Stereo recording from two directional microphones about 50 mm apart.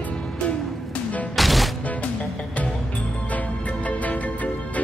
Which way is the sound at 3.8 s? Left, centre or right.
Left.